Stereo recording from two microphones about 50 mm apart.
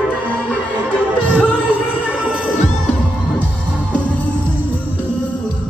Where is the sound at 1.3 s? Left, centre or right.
Left.